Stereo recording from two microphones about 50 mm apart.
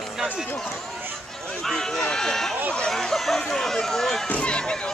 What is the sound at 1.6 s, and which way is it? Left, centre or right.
Speech, centre.